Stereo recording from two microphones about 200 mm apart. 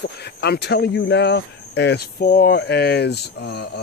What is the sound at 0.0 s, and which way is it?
Speech, 55° left (ahead or behind).